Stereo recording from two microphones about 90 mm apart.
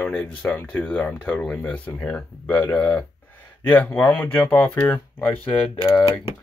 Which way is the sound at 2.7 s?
15° left (ahead or behind).